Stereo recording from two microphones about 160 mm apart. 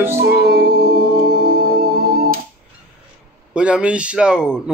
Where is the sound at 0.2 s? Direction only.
85° right.